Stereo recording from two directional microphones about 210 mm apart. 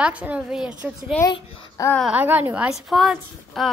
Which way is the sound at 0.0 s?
5° right (ahead or behind).